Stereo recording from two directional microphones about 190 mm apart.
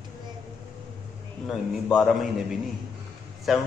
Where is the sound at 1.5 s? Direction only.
Centre (ahead or behind).